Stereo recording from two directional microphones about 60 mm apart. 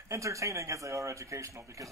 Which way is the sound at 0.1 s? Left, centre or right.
Right.